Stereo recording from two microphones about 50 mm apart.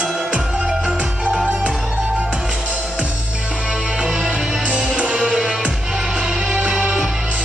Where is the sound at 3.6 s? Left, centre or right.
Right.